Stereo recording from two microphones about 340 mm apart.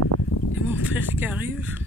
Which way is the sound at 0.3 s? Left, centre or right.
Left.